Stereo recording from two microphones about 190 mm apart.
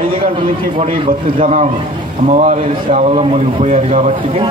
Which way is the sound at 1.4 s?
40° right (ahead or behind).